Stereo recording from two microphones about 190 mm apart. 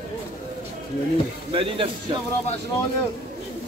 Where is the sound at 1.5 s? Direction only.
30° right (ahead or behind).